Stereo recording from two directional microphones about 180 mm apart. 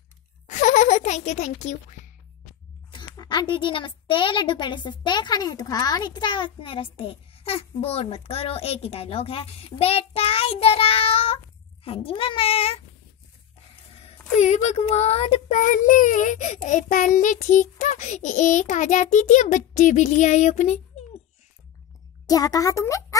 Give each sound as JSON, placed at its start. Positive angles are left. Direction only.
{"t": 0.5, "sound": "a sound", "side_deg": 40}
{"t": 2.9, "sound": "a child's voice", "side_deg": 25}
{"t": 14.0, "sound": "a child's voice", "side_deg": 40}
{"t": 22.2, "sound": "a child's voice", "side_deg": 20}